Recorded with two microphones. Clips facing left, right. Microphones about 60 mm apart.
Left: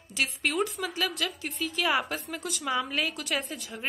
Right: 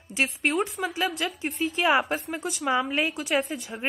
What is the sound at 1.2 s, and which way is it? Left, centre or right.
A woman's voice, right.